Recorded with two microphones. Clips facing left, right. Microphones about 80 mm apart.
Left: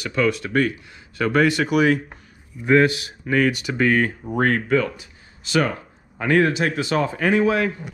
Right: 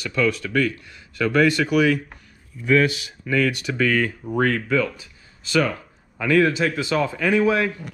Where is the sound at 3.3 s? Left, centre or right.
Left.